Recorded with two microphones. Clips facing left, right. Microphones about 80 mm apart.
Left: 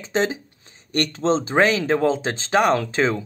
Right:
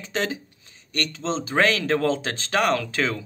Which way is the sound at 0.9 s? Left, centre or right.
Left.